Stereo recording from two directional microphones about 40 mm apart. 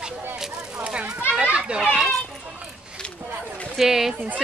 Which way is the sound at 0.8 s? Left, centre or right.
Right.